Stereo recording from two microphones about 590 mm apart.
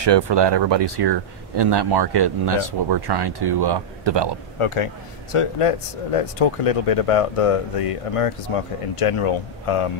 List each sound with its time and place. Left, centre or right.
0.0 s speech: right
4.6 s speech: left